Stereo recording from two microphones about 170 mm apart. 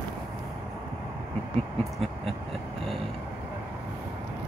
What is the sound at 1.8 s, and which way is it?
Owl, centre (ahead or behind).